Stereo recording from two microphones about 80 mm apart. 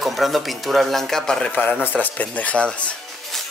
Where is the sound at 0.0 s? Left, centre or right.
Centre.